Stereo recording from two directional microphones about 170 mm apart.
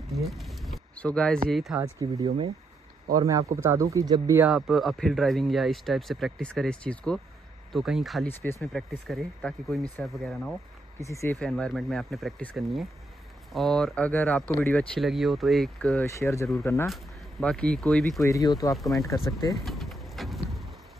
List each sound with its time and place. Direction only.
0.1 s a sound: centre (ahead or behind)
1.5 s speech: centre (ahead or behind)
1.8 s speech: 20° right (ahead or behind)
4.5 s speech: centre (ahead or behind)
8.3 s speech: 15° left (ahead or behind)
8.7 s speech: centre (ahead or behind)
11.0 s speech: 15° left (ahead or behind)
11.3 s speech: 5° left (ahead or behind)
16.0 s speech: 15° left (ahead or behind)
16.9 s speech: 5° left (ahead or behind)
18.2 s speech: 20° left (ahead or behind)
19.5 s vehicle: centre (ahead or behind)